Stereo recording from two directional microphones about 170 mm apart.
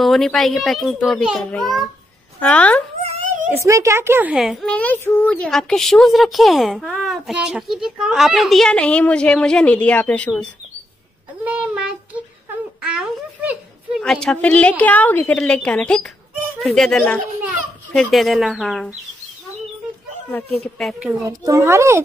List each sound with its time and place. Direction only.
0.0 s a child's voice: centre (ahead or behind)
3.5 s a child's voice: 15° right (ahead or behind); by 10.5 s 5° left (ahead or behind)
11.4 s a sound: 5° right (ahead or behind)
12.8 s a child's voice: 5° right (ahead or behind)
20.5 s a child's voice: 5° left (ahead or behind)
21.3 s a child's voice: 20° right (ahead or behind)